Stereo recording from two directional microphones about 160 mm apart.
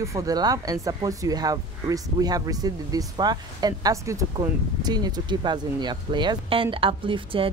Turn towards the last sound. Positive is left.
turn(degrees=-35)  # may be behind; listen again after turning